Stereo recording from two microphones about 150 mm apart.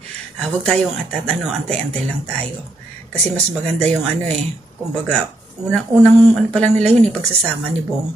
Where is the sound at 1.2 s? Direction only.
5° left (ahead or behind).